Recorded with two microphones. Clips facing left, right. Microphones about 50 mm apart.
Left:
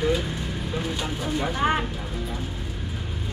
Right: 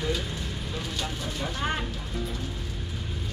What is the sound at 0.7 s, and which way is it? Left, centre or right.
Speech, centre.